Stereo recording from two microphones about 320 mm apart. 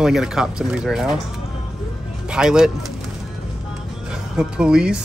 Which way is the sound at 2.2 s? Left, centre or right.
Centre.